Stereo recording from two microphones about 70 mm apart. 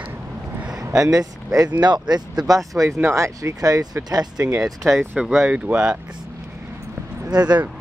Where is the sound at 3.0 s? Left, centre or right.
Right.